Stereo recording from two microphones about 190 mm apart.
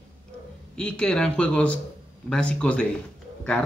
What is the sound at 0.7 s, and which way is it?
A man's voice, 5° left (ahead or behind).